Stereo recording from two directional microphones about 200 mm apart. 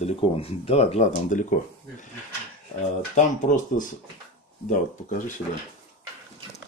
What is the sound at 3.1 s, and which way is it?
Speech, 40° left (ahead or behind).